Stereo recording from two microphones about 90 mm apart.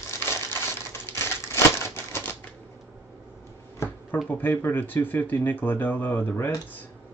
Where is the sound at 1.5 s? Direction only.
30° left (ahead or behind).